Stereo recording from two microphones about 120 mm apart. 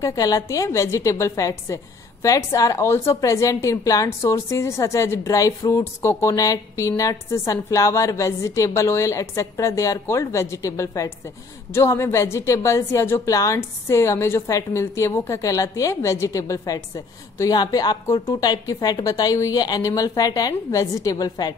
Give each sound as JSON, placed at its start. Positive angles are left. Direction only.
{"t": 0.0, "sound": "a woman's voice", "side_deg": 30}